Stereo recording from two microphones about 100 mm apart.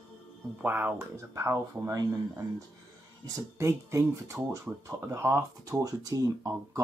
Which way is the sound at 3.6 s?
30° right (ahead or behind).